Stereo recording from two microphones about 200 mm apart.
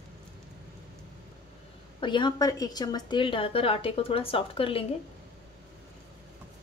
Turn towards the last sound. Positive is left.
turn(degrees=25)  # may be behind; listen again after turning